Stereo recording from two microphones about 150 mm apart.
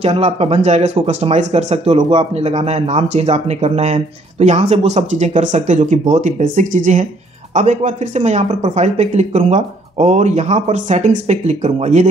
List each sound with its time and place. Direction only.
0.0 s speech: 45° right (ahead or behind)